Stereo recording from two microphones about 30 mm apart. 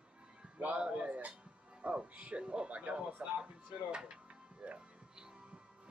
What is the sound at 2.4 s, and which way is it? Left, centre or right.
Speech, right.